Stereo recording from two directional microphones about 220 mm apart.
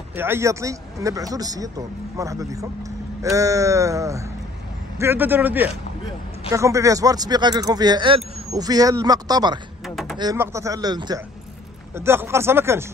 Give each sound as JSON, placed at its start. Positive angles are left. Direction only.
{"t": 0.1, "sound": "speech", "side_deg": -10}
{"t": 9.8, "sound": "a sound", "side_deg": 0}
{"t": 10.1, "sound": "speech", "side_deg": -15}